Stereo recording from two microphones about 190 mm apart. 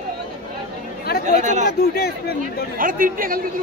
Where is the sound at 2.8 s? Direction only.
45° right (ahead or behind).